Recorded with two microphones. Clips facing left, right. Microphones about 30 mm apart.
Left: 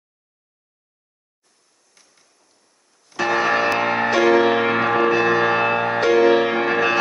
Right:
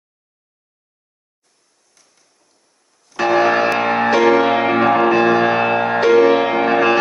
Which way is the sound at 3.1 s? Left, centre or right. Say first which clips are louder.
Right 4 dB; centre.